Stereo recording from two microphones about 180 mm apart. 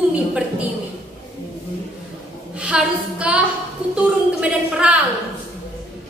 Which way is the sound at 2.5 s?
5° right (ahead or behind).